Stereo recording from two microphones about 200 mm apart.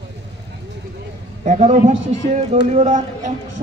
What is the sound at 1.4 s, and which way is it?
A man's voice, 35° right (ahead or behind).